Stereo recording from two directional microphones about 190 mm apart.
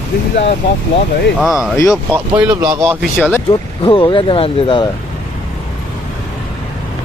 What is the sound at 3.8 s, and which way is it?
Speech, 25° left (ahead or behind).